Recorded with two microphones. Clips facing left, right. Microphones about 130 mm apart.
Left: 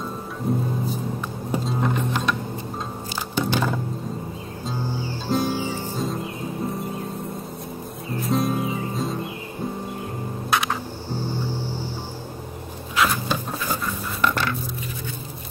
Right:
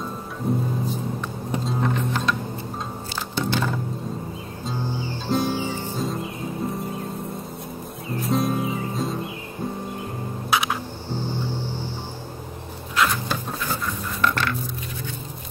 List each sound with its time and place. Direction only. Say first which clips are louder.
0.4 s music: even; centre (ahead or behind)
3.3 s music: left 2 dB; 15° left (ahead or behind)
5.3 s music: even; centre (ahead or behind)
8.2 s music: even; centre (ahead or behind)
10.5 s a sound: even; 5° right (ahead or behind)
12.9 s a sound: left 1 dB; 5° left (ahead or behind)